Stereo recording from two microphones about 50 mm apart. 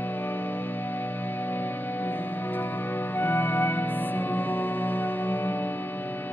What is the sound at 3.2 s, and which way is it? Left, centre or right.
Music, left.